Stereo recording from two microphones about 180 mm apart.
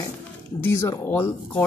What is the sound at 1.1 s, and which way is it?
Speech, 10° left (ahead or behind).